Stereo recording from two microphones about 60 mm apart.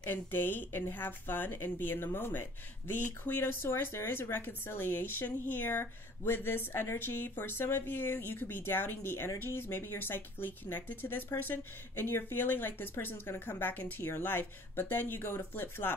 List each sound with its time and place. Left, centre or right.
0.0 s speech: left